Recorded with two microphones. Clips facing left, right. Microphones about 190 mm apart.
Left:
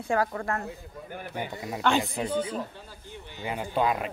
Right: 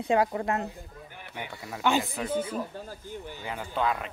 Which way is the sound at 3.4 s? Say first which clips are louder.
Left 3 dB; 20° left (ahead or behind).